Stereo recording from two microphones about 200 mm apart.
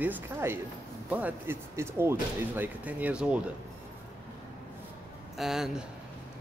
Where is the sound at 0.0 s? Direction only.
10° right (ahead or behind).